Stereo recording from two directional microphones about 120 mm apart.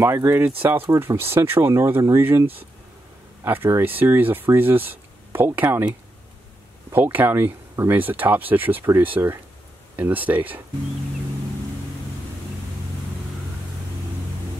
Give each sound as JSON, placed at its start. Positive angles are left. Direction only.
{"t": 0.0, "sound": "speech", "side_deg": -20}